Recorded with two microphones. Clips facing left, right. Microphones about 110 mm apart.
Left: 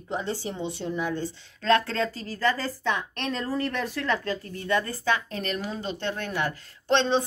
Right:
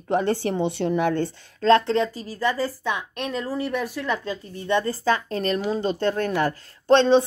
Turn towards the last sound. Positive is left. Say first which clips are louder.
# right 7 dB
turn(degrees=-35)  # may be behind; listen again after turning